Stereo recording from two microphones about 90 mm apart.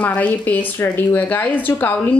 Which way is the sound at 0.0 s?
15° left (ahead or behind).